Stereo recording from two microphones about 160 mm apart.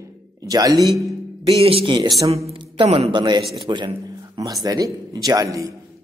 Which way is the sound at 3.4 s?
Centre (ahead or behind).